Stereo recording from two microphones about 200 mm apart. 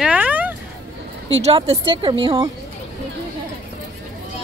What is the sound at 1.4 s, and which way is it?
A woman's voice, 30° right (ahead or behind).